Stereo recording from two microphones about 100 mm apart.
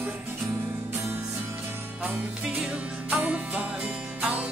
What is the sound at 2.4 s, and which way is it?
Music, 10° right (ahead or behind).